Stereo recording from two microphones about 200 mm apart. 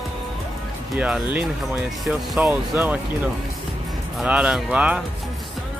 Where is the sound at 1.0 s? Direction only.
5° right (ahead or behind).